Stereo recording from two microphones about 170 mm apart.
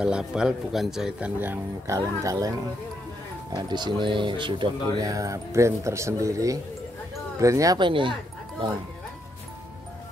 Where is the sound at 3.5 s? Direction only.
25° right (ahead or behind).